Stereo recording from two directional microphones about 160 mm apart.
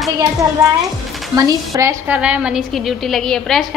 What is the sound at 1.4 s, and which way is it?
Speech, 20° right (ahead or behind).